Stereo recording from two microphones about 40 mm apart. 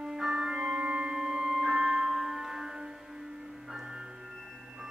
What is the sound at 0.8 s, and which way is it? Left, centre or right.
Music, right.